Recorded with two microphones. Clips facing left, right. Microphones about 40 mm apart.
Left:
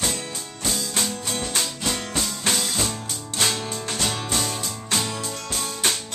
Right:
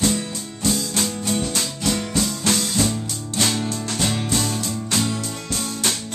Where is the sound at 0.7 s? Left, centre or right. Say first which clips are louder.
Right 3 dB; centre.